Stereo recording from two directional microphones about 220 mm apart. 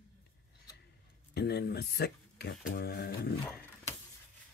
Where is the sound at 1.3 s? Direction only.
45° left (ahead or behind).